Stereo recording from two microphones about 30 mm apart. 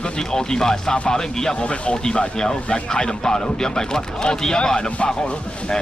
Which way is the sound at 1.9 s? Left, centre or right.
Left.